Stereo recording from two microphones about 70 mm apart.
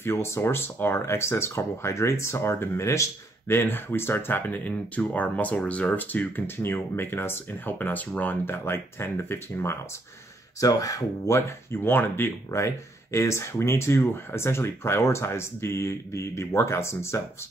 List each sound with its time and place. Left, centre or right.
0.0 s speech: left
10.6 s speech: left
12.4 s speech: left